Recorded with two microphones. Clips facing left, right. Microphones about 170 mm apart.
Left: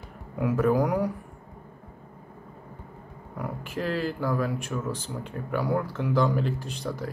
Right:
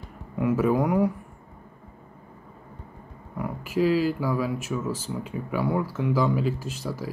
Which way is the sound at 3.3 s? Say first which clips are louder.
Right 7 dB; 5° right (ahead or behind).